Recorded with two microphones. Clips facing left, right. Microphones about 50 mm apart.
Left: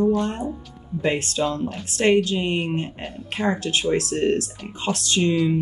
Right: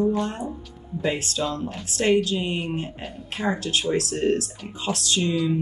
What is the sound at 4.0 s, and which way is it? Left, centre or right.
Speech, left.